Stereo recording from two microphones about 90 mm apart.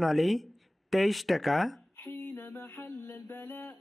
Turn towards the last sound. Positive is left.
turn(degrees=20)  # may be behind; listen again after turning